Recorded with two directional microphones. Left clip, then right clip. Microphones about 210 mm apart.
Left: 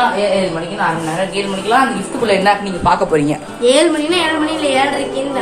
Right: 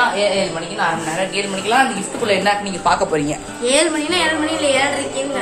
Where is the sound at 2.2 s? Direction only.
20° left (ahead or behind).